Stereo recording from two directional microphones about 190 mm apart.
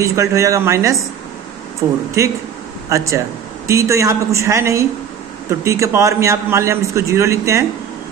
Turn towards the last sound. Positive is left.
turn(degrees=-15)  # may be behind; listen again after turning